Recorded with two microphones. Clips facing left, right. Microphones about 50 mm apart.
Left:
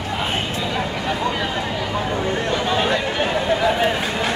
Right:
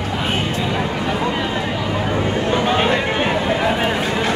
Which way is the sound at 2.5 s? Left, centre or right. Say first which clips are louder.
Right 4 dB; right.